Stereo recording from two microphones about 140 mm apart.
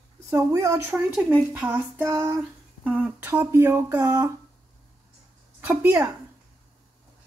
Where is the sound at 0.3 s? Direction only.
20° right (ahead or behind).